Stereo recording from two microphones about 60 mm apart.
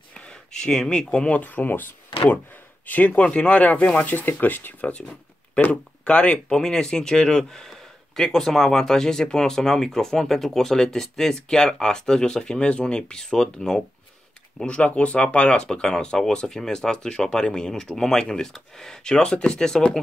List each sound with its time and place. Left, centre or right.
0.2 s speech: centre
1.4 s speech: left
4.9 s a sound: centre
5.6 s speech: left
14.7 s speech: left